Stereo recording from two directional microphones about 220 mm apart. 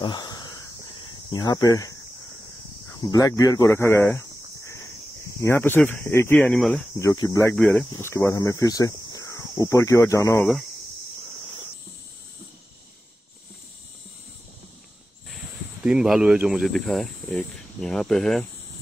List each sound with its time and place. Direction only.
0.0 s a sound: 20° left (ahead or behind)
1.3 s speech: 15° left (ahead or behind)
15.3 s speech: 5° right (ahead or behind)